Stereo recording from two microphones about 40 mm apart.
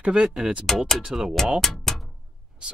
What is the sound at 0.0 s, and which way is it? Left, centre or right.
Speech, right.